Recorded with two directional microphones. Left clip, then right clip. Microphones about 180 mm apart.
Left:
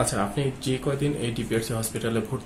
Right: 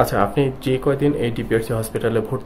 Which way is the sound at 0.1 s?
35° right (ahead or behind).